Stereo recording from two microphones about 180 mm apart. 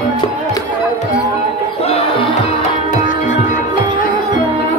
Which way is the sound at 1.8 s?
30° left (ahead or behind).